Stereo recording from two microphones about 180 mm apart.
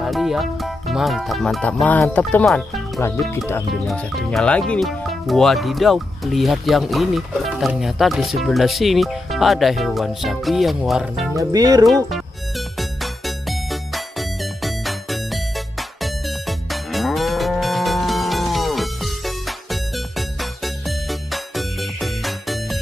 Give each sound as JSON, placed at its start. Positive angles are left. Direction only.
{"t": 0.0, "sound": "speech", "side_deg": 0}
{"t": 3.8, "sound": "speech", "side_deg": 0}
{"t": 11.3, "sound": "speech", "side_deg": -20}
{"t": 11.8, "sound": "music", "side_deg": 0}